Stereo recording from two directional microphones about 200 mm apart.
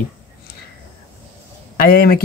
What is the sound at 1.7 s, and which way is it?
Speech, 45° left (ahead or behind).